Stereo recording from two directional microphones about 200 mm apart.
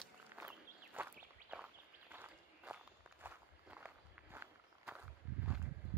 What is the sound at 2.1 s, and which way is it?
Walk, 10° right (ahead or behind).